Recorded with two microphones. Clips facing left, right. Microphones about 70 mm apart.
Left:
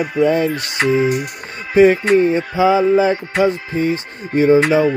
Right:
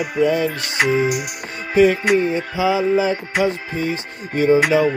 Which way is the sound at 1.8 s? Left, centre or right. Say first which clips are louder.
Left 4 dB; left.